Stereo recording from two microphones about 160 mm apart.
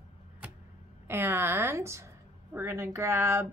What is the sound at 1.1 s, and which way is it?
A woman's voice, 15° right (ahead or behind).